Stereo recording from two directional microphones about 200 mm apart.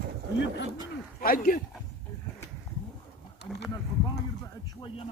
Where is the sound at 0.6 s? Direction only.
20° right (ahead or behind).